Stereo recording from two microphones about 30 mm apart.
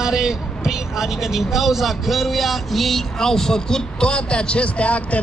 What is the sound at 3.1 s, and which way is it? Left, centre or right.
A man's voice, centre.